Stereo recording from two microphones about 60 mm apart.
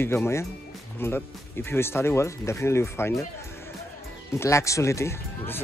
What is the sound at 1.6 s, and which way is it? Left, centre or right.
Speech, left.